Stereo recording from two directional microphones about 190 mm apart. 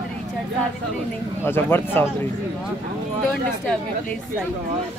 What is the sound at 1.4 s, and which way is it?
Speech, 10° left (ahead or behind).